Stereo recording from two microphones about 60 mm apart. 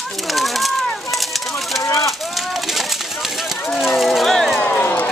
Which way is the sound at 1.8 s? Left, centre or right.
Left.